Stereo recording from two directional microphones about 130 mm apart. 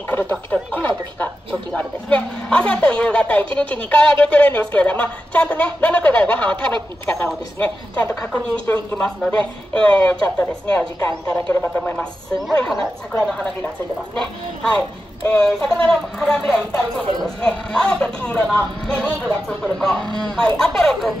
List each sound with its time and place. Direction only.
0.1 s speech: 15° left (ahead or behind)
11.1 s speech: 20° left (ahead or behind)
11.4 s speech: 10° left (ahead or behind)
14.6 s speech: 10° left (ahead or behind)